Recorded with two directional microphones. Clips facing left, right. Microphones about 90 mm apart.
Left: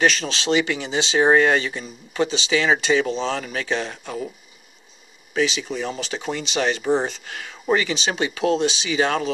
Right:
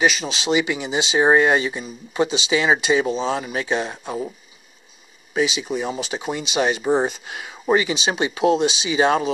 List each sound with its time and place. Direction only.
0.0 s speech: 5° right (ahead or behind)
5.3 s speech: 15° right (ahead or behind)